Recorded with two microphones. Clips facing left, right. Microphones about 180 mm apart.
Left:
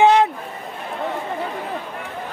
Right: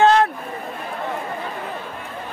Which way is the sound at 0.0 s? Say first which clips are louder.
Left 1 dB; 15° left (ahead or behind).